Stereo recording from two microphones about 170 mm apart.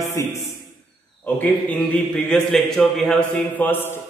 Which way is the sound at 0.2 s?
20° left (ahead or behind).